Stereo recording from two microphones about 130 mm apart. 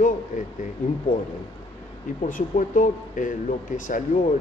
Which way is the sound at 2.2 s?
85° left.